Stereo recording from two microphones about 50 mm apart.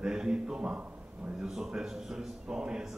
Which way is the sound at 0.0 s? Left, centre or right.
Centre.